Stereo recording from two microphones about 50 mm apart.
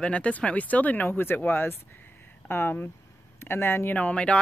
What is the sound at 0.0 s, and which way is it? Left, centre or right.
Speech, left.